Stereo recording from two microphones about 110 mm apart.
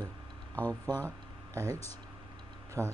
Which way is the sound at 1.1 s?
30° right (ahead or behind).